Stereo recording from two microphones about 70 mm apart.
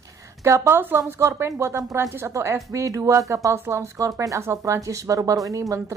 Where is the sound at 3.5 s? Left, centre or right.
Right.